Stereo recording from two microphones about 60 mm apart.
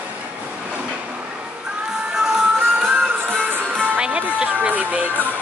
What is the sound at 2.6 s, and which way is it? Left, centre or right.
Music, right.